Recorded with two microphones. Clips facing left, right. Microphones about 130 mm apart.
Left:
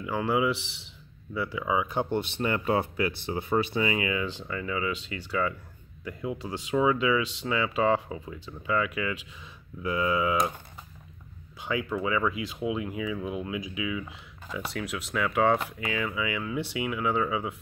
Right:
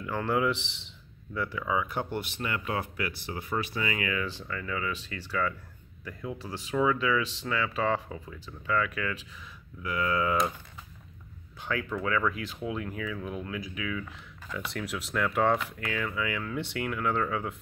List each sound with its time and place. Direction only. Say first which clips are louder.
0.0 s speech: left 2 dB; 10° left (ahead or behind)
11.6 s speech: left 2 dB; 10° left (ahead or behind)
14.7 s speech: left 1 dB; centre (ahead or behind)